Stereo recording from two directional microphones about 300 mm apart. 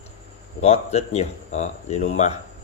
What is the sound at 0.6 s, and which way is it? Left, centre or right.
Speech, left.